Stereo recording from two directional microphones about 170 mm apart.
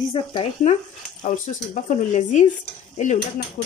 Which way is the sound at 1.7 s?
45° left (ahead or behind).